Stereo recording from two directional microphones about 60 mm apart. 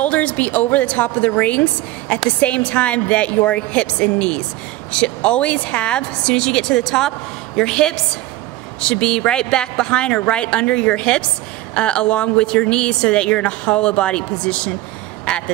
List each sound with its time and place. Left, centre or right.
0.0 s a woman's voice: left